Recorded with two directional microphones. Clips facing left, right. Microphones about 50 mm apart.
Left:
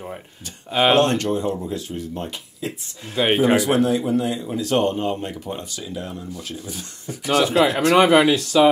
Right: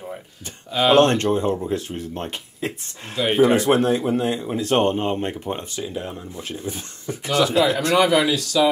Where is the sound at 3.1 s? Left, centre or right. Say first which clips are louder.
Left 3 dB; left.